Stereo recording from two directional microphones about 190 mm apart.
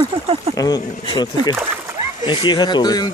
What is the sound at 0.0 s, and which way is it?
Speech, 30° right (ahead or behind).